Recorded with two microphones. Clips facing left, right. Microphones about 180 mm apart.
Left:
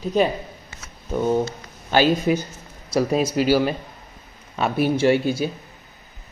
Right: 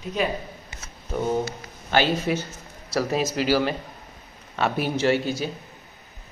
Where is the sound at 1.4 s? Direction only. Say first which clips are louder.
Left 4 dB; 15° left (ahead or behind).